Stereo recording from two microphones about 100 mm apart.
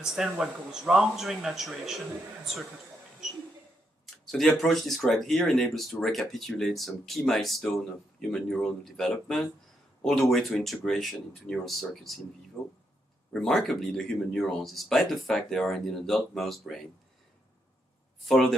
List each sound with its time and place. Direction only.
0.0 s speech: 5° right (ahead or behind)
4.0 s speech: centre (ahead or behind)
12.6 s speech: 30° left (ahead or behind)
13.3 s speech: 5° left (ahead or behind)
18.3 s speech: centre (ahead or behind)